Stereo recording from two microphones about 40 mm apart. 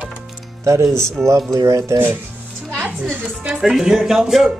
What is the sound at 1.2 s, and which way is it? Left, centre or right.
Speech, right.